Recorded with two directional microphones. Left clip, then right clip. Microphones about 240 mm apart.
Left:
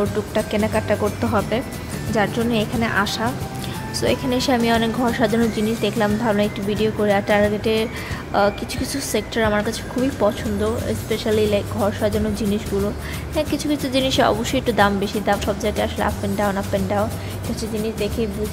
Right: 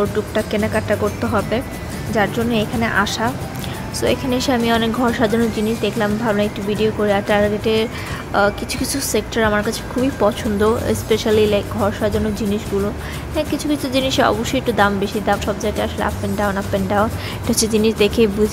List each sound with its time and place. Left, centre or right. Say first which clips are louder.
0.3 s speech: right 1 dB; centre
17.6 s speech: right 9 dB; centre